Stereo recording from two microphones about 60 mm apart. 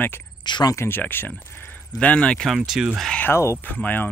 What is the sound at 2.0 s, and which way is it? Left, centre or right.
Speech, centre.